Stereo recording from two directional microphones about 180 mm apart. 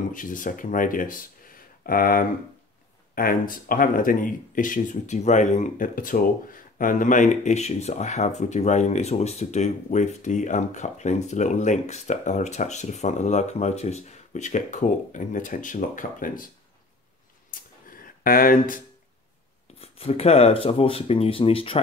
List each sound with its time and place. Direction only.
0.1 s speech: 50° left (ahead or behind)
17.5 s a sound: 50° left (ahead or behind)
19.8 s speech: 35° left (ahead or behind)